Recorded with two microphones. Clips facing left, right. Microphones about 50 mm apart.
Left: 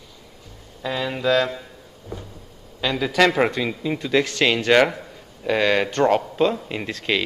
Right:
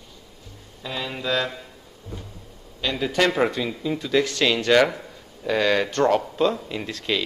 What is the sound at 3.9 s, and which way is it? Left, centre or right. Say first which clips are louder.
Speech: even; left.